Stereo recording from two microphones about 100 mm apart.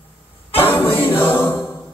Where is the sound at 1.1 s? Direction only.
20° left (ahead or behind).